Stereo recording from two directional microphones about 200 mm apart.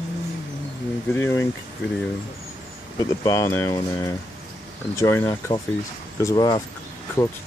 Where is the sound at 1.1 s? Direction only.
10° left (ahead or behind).